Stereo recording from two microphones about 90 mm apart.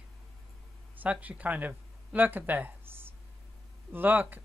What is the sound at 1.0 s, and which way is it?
Speech, 15° right (ahead or behind).